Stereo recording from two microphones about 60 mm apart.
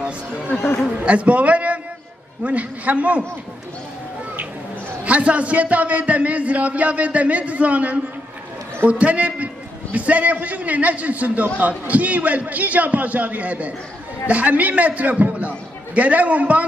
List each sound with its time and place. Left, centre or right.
1.0 s a man's voice: right
5.0 s a man's voice: right